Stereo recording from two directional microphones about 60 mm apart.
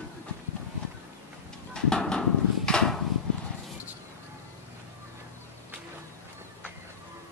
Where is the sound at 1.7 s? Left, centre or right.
Centre.